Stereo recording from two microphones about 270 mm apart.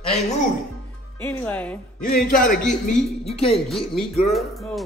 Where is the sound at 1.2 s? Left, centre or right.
Centre.